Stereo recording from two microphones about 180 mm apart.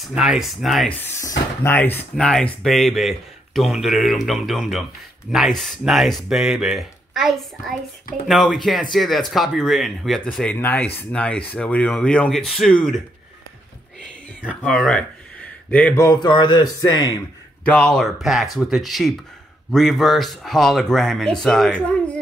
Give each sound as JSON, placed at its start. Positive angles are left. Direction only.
{"t": 0.1, "sound": "speech", "side_deg": -5}
{"t": 1.6, "sound": "speech", "side_deg": 10}
{"t": 14.5, "sound": "speech", "side_deg": 5}
{"t": 17.6, "sound": "speech", "side_deg": 5}